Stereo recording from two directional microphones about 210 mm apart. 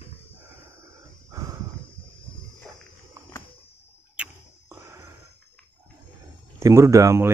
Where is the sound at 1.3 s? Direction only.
15° right (ahead or behind).